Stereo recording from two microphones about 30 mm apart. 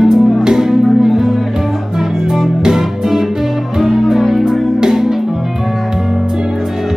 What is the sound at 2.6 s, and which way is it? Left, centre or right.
Music, centre.